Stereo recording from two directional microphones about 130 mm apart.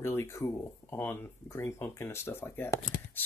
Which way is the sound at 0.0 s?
20° left (ahead or behind).